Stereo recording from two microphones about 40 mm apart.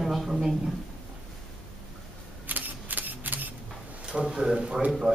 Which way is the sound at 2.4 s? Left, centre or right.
Right.